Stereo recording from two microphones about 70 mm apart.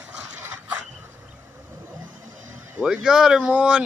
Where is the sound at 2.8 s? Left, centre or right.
Centre.